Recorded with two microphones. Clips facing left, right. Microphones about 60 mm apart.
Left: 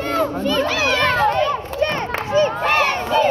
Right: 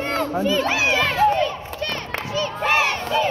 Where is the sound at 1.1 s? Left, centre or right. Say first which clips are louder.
Even; left.